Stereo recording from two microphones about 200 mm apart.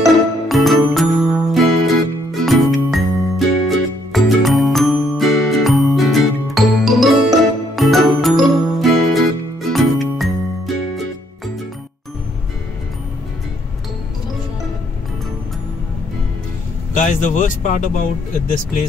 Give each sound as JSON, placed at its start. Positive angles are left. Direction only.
{"t": 0.0, "sound": "music", "side_deg": 0}
{"t": 16.9, "sound": "speech", "side_deg": 40}